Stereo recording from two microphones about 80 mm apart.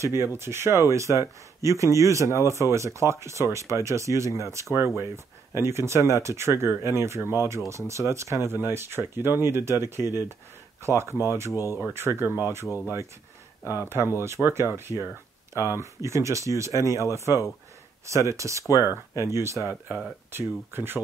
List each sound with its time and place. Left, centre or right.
0.0 s speech: right
13.8 s speech: right